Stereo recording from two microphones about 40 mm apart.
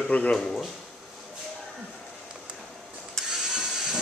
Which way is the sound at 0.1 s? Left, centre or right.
Left.